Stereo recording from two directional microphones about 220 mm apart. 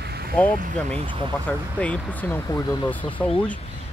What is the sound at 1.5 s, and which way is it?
Speech, 5° left (ahead or behind).